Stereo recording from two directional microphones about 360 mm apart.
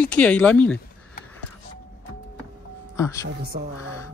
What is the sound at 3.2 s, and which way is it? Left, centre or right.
Speech, right.